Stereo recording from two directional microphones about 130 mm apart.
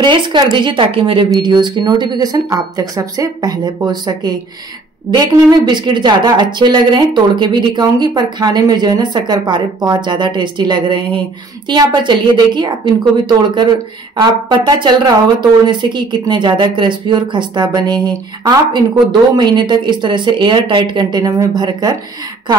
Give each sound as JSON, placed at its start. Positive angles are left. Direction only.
{"t": 0.0, "sound": "speech", "side_deg": -40}